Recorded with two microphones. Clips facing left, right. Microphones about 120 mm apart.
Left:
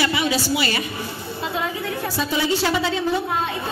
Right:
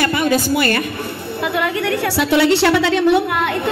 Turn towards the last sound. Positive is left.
turn(degrees=-70)  # may be behind; listen again after turning